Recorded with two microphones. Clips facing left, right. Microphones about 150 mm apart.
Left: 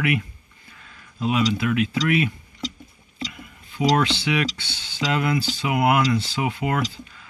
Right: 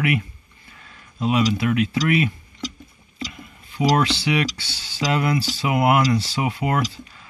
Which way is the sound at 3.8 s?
5° right (ahead or behind).